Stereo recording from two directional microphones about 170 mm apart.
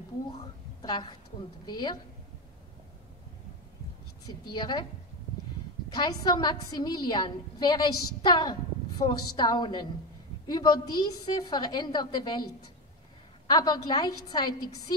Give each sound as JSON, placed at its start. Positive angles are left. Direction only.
{"t": 0.4, "sound": "a woman's voice", "side_deg": 25}
{"t": 4.5, "sound": "a woman's voice", "side_deg": 25}
{"t": 5.9, "sound": "a woman's voice", "side_deg": 25}
{"t": 13.5, "sound": "a woman's voice", "side_deg": 25}